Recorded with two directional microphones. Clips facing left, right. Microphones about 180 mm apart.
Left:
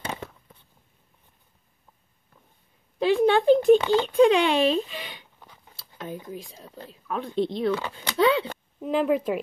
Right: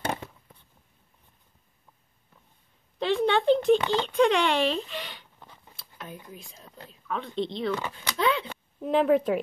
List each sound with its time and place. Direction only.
3.0 s speech: 10° left (ahead or behind)
6.3 s speech: 35° left (ahead or behind)
7.1 s speech: 10° left (ahead or behind)
7.9 s speech: 30° left (ahead or behind)
8.8 s speech: centre (ahead or behind)